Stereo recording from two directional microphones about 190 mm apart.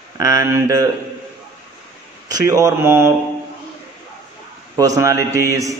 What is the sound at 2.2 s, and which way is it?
Speech, 20° right (ahead or behind).